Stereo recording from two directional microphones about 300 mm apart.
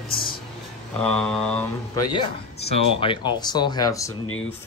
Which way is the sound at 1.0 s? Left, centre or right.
Centre.